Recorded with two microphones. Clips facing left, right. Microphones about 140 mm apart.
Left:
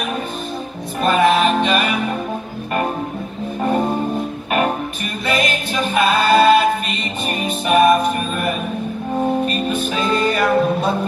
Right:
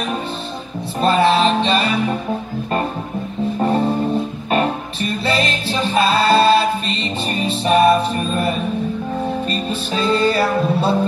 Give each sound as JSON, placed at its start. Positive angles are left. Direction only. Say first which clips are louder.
{"t": 1.0, "sound": "music", "louder": "even", "side_deg": -30}
{"t": 4.5, "sound": "music", "louder": "even", "side_deg": -30}